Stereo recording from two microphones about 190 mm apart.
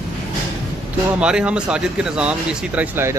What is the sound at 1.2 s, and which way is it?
Speech, 5° right (ahead or behind).